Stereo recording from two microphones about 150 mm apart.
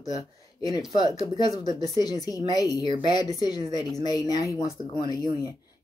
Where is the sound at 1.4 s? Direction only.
25° left (ahead or behind).